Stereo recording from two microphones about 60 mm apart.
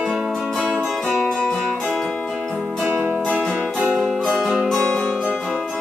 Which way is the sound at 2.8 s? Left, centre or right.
Right.